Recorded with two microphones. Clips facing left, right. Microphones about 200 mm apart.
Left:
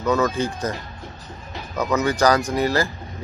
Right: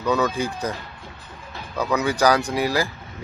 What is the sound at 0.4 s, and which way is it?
Speech, 15° right (ahead or behind).